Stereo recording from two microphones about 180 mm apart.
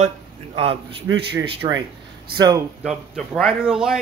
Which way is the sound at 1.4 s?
20° right (ahead or behind).